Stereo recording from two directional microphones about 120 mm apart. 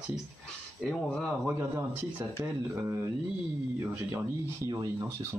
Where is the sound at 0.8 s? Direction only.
5° left (ahead or behind).